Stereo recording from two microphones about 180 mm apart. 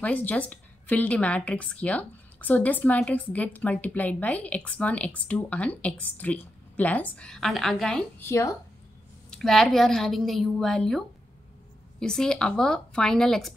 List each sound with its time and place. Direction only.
0.0 s speech: 10° left (ahead or behind)
8.3 s speech: 15° left (ahead or behind)
9.3 s a woman's voice: centre (ahead or behind)